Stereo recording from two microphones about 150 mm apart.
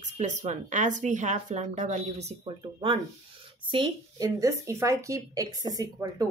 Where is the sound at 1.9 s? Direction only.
45° right (ahead or behind).